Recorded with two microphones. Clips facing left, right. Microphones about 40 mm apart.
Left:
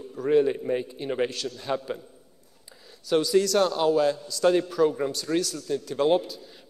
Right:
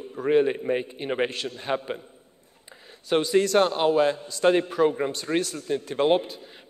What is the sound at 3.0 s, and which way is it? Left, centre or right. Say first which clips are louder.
A man's voice: even; right.